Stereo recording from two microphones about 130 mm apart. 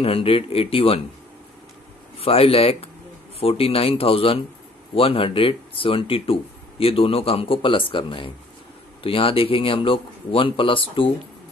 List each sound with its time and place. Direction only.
0.0 s speech: 45° left (ahead or behind)
2.1 s speech: 45° left (ahead or behind)